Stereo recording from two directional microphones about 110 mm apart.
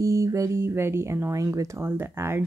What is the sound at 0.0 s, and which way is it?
Speech, 30° right (ahead or behind).